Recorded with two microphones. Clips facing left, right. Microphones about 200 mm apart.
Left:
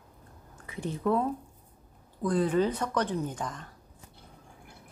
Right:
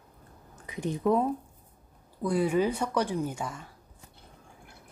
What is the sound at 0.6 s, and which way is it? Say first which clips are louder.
Speech: right 2 dB; 15° right (ahead or behind).